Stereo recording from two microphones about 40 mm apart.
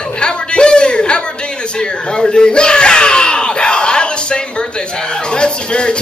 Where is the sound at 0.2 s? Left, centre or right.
Left.